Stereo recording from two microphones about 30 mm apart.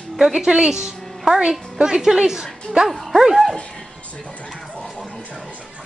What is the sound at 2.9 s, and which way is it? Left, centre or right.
Bow-wow, centre.